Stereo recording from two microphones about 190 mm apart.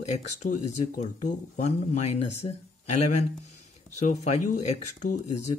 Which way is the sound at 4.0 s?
35° left (ahead or behind).